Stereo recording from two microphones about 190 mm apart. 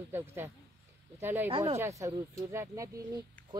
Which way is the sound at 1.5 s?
30° right (ahead or behind).